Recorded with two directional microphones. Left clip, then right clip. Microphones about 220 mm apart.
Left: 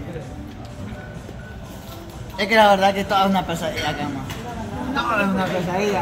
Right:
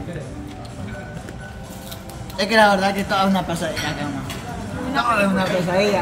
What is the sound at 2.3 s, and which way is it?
A man's voice, 15° left (ahead or behind).